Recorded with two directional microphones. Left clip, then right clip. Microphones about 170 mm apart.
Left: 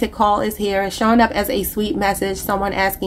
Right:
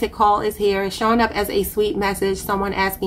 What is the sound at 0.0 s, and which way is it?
A woman's voice, 30° left (ahead or behind).